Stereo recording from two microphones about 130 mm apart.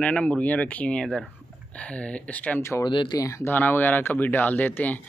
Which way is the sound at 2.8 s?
35° left (ahead or behind).